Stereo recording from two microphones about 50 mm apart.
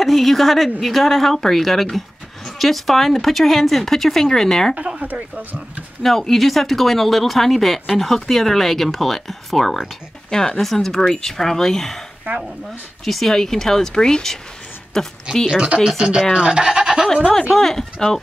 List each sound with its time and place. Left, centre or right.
0.0 s a woman's voice: centre
6.0 s speech: centre
10.3 s speech: centre
10.6 s speech: centre
12.3 s speech: right
13.0 s speech: centre
15.4 s speech: centre
17.6 s speech: centre